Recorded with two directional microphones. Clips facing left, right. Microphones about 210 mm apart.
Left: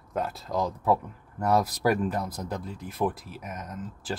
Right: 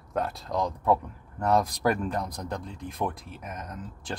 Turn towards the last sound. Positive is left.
turn(degrees=5)  # may be behind; listen again after turning